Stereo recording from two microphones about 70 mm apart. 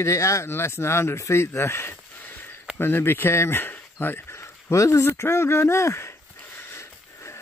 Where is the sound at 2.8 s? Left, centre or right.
Left.